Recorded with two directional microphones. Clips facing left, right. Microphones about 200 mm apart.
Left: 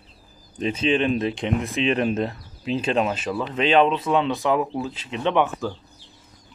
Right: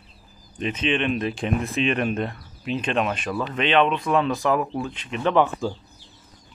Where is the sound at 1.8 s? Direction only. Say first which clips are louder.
Left 3 dB; 30° left (ahead or behind).